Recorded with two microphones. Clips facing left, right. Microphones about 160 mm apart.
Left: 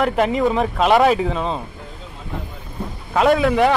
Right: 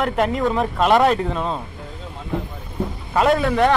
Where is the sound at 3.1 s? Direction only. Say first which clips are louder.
Left 2 dB; centre (ahead or behind).